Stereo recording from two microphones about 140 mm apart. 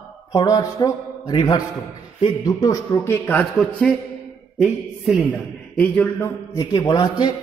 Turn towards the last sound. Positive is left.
turn(degrees=30)  # may be behind; listen again after turning